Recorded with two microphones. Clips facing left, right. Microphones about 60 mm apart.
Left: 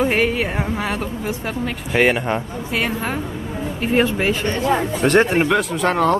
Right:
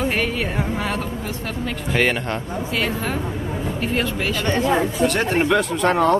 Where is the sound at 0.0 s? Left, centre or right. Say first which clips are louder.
Left 4 dB; centre.